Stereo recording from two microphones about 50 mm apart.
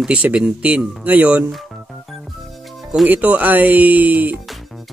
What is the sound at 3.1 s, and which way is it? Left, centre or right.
Speech, right.